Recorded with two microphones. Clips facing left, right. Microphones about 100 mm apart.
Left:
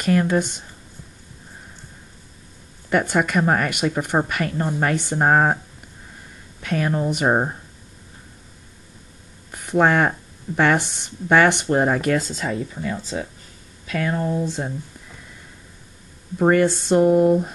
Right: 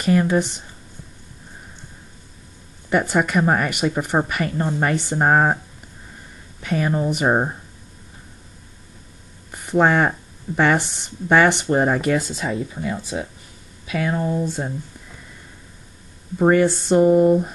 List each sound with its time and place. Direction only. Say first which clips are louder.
0.0 s speech: right 1 dB; 5° right (ahead or behind)
2.9 s speech: right 1 dB; 5° right (ahead or behind)
6.6 s speech: right 1 dB; 5° right (ahead or behind)
9.5 s speech: right 1 dB; 5° right (ahead or behind)
16.3 s speech: right 1 dB; 5° right (ahead or behind)